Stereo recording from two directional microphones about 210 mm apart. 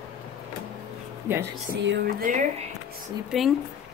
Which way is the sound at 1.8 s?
45° right (ahead or behind).